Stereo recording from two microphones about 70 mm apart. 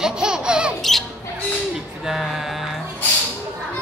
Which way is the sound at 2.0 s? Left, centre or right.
Centre.